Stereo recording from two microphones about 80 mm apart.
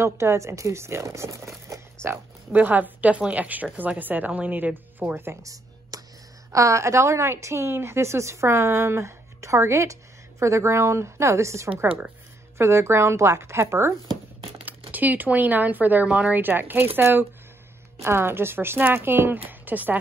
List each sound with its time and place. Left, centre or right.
0.0 s a woman's voice: right
2.5 s speech: right
5.4 s a sound: right
6.5 s a woman's voice: right
14.6 s speech: right